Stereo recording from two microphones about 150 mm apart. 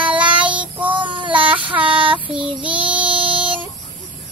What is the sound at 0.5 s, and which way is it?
Child singing, 10° right (ahead or behind).